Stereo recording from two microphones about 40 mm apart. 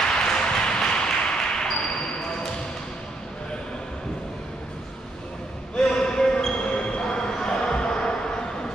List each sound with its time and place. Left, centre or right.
0.1 s ping: centre
5.8 s basketball bounce: left